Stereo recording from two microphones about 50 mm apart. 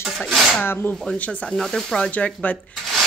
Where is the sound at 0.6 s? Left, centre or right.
Left.